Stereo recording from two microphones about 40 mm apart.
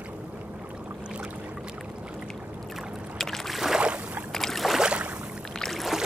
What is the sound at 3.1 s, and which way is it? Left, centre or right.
Boat, centre.